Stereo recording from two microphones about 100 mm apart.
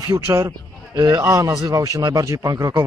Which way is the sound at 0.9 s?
45° right (ahead or behind).